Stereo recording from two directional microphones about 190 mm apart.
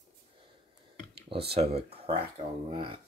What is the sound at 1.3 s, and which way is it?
Speech, 30° right (ahead or behind).